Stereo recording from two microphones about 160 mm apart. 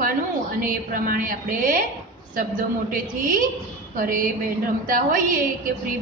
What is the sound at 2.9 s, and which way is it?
A man's voice, 60° right (ahead or behind).